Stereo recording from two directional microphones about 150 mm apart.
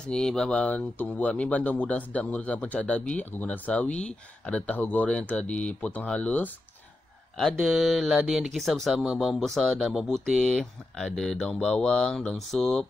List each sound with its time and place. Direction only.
0.0 s speech: 5° left (ahead or behind)